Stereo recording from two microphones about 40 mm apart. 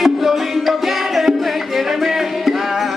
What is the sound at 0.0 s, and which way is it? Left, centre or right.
Music, centre.